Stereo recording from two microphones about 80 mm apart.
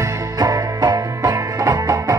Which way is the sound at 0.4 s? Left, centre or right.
Right.